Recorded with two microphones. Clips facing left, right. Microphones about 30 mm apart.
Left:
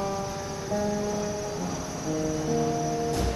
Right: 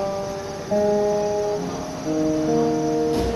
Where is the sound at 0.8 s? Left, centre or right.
Right.